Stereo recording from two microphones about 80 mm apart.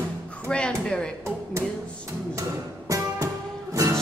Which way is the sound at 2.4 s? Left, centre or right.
Right.